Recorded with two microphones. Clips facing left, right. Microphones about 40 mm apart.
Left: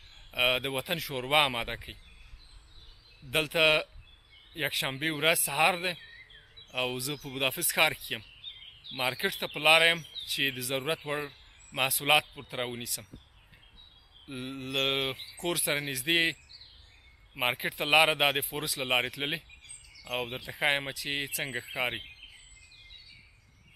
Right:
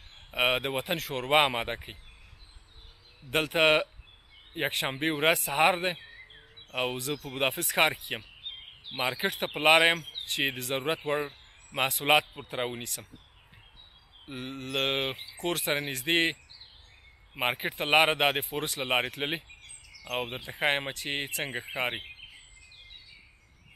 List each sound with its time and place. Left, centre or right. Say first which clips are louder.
0.3 s a man's voice: right 1 dB; centre
3.3 s a man's voice: right 1 dB; centre
6.3 s bird: right 1 dB; centre
7.2 s a man's voice: right 1 dB; centre
14.3 s a man's voice: even; centre
17.3 s a man's voice: right 1 dB; centre; by 21.7 s right
21.7 s a man's voice: right 1 dB; centre